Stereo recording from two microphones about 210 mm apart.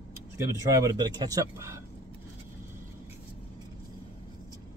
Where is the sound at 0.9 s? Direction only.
20° right (ahead or behind).